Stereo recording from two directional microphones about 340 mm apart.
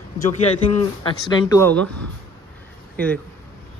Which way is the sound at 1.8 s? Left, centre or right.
Right.